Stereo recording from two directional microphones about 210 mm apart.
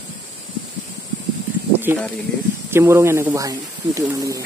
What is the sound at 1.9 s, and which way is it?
Speech, 10° right (ahead or behind).